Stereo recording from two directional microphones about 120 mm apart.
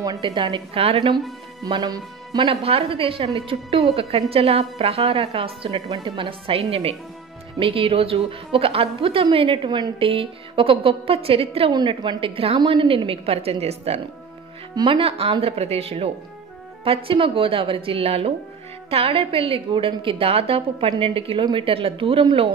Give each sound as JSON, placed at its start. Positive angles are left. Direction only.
{"t": 0.0, "sound": "a woman's voice", "side_deg": -35}
{"t": 1.7, "sound": "a woman's voice", "side_deg": -35}
{"t": 2.5, "sound": "a woman's voice", "side_deg": -55}
{"t": 11.7, "sound": "a woman's voice", "side_deg": -40}